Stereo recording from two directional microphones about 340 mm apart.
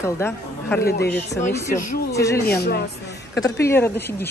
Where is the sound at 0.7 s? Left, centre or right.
Left.